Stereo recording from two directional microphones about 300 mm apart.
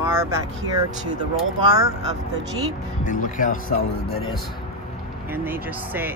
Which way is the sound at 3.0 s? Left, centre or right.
Left.